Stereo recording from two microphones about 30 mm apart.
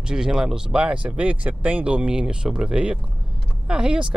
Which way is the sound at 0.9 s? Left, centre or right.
Right.